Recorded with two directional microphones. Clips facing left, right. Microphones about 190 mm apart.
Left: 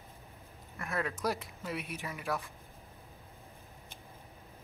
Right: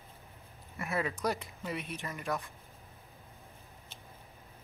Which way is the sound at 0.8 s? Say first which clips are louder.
Right 1 dB; 5° right (ahead or behind).